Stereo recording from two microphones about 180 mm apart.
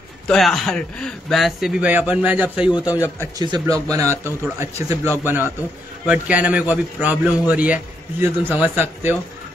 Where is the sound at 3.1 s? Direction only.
20° right (ahead or behind).